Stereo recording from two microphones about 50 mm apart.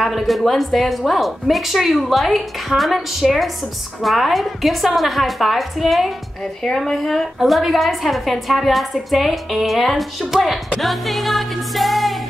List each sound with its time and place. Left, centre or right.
0.0 s a woman's voice: centre
10.8 s music: centre